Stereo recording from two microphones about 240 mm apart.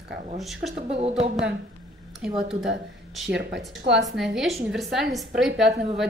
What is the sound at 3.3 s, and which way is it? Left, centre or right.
Speech, right.